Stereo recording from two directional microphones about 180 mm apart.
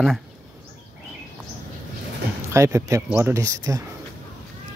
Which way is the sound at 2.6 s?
15° right (ahead or behind).